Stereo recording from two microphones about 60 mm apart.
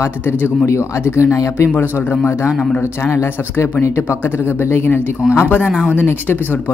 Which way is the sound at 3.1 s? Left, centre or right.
Left.